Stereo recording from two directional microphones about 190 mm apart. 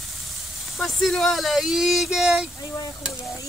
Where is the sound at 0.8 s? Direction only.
Centre (ahead or behind).